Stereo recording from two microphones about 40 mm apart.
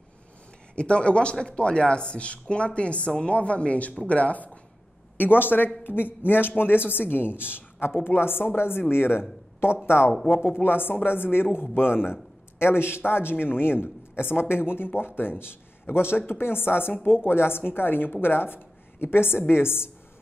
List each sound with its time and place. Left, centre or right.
0.7 s speech: left
5.1 s a sound: left
5.9 s a woman's voice: left
10.5 s a woman's voice: left
16.2 s a woman's voice: left